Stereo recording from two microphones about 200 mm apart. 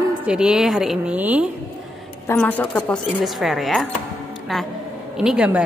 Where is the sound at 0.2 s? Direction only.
5° right (ahead or behind).